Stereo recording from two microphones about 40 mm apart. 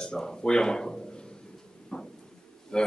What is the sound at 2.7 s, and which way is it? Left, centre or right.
Speech, centre.